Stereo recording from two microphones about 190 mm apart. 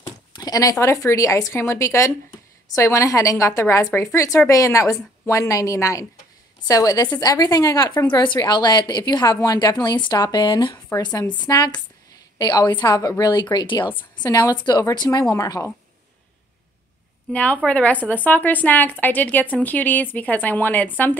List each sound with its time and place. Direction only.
0.0 s a woman's voice: 20° left (ahead or behind)
17.3 s a woman's voice: 5° left (ahead or behind)